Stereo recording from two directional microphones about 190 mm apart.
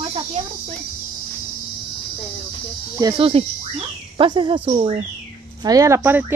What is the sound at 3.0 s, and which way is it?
Speech, 30° right (ahead or behind).